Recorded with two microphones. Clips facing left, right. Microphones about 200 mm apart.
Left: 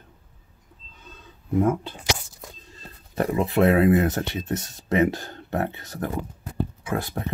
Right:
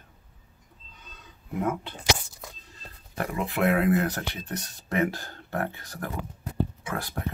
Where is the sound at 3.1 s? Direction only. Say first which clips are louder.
Left 8 dB; 25° left (ahead or behind).